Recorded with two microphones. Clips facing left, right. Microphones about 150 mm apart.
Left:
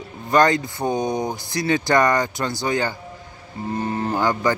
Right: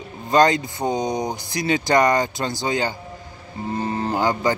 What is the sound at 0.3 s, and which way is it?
Speech, 20° right (ahead or behind).